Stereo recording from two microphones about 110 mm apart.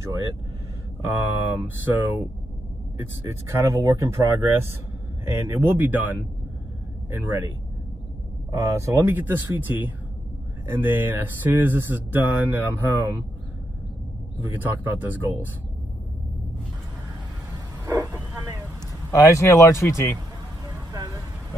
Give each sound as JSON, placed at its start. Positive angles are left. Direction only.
{"t": 1.0, "sound": "speech", "side_deg": -20}
{"t": 14.5, "sound": "speech", "side_deg": -15}
{"t": 17.8, "sound": "bow-wow", "side_deg": -30}
{"t": 19.0, "sound": "speech", "side_deg": 25}